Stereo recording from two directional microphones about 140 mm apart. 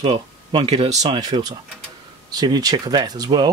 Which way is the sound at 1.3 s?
30° right (ahead or behind).